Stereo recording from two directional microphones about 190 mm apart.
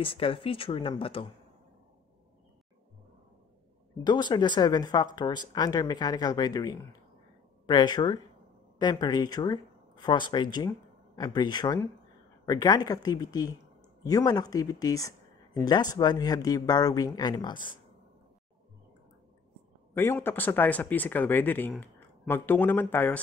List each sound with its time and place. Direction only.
0.0 s speech: 30° left (ahead or behind)
4.0 s speech: 25° left (ahead or behind)
19.9 s speech: 10° left (ahead or behind)